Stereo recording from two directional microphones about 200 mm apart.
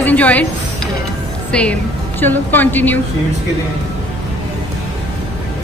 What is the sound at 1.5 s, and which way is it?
A woman's voice, 5° left (ahead or behind).